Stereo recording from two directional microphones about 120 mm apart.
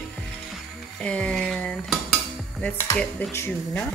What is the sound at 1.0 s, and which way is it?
Speech, 10° left (ahead or behind).